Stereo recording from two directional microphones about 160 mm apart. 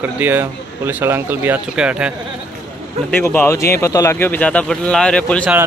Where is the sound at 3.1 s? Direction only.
10° left (ahead or behind).